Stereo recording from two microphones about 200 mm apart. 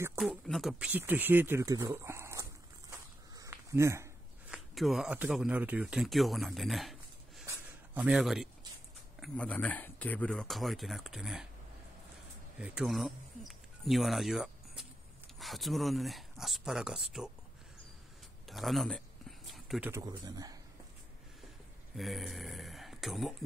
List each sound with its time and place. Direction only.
0.2 s speech: centre (ahead or behind)
2.9 s a sound: 15° right (ahead or behind)
4.7 s speech: centre (ahead or behind)
7.4 s a sound: 10° right (ahead or behind)
9.2 s speech: 5° left (ahead or behind)
12.5 s speech: 5° right (ahead or behind)
18.5 s a sound: centre (ahead or behind)
19.9 s speech: 15° right (ahead or behind)
21.9 s speech: centre (ahead or behind)